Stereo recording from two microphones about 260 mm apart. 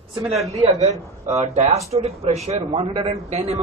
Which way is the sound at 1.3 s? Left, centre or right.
Right.